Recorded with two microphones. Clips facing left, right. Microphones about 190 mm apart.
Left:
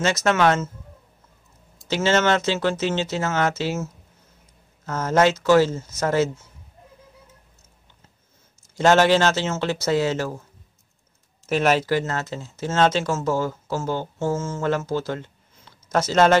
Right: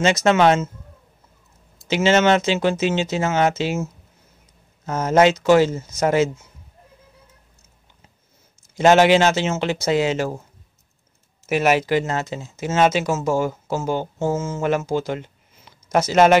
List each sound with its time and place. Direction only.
0.0 s speech: 20° right (ahead or behind)
1.9 s speech: 15° right (ahead or behind)
8.7 s speech: 15° right (ahead or behind)
11.4 s speech: 10° right (ahead or behind)